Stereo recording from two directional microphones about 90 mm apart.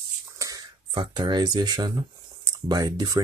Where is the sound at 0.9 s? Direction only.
55° right (ahead or behind).